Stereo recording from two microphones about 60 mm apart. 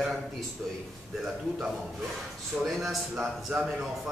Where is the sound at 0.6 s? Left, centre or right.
Centre.